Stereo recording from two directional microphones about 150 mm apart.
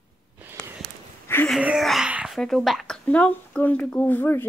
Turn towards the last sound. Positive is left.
turn(degrees=15)  # may be behind; listen again after turning